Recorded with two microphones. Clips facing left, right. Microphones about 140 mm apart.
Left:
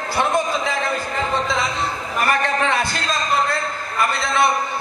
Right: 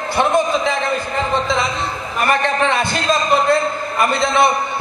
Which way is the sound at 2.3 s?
20° right (ahead or behind).